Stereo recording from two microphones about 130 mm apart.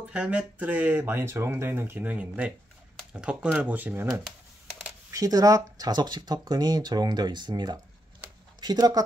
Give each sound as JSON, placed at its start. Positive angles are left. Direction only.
{"t": 0.1, "sound": "speech", "side_deg": -10}
{"t": 5.1, "sound": "speech", "side_deg": -25}